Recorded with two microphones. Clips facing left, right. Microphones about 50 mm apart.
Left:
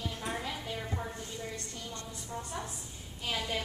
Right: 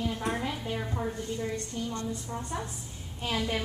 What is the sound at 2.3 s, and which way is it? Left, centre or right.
Speech, centre.